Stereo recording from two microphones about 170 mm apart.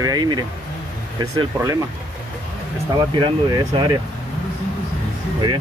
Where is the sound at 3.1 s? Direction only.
25° right (ahead or behind).